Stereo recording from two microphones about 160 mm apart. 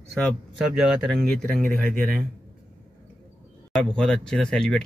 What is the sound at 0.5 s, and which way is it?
Speech, 5° right (ahead or behind).